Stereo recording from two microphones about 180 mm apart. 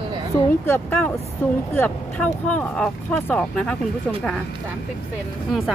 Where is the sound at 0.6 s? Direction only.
10° left (ahead or behind).